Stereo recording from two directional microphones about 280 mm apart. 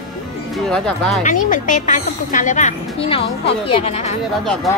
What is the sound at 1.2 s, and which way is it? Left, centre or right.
A woman's voice, left.